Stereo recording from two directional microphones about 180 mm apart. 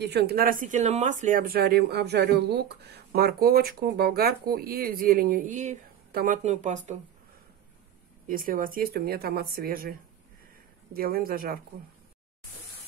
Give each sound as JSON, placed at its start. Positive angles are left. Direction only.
{"t": 0.0, "sound": "speech", "side_deg": -65}
{"t": 8.3, "sound": "speech", "side_deg": -50}
{"t": 11.0, "sound": "speech", "side_deg": -55}